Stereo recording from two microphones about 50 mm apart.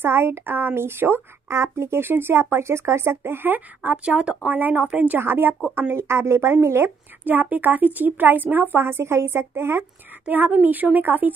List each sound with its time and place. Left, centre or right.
0.0 s a woman's voice: right
4.0 s speech: right
5.2 s a woman's voice: right
7.2 s a woman's voice: right
10.3 s speech: right